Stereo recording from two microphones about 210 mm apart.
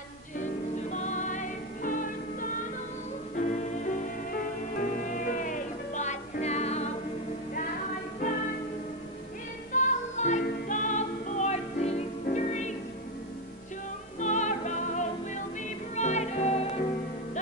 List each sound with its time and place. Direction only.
0.9 s music: 35° left (ahead or behind)
9.8 s music: 35° left (ahead or behind)
14.2 s music: 35° left (ahead or behind)
16.0 s music: 35° left (ahead or behind)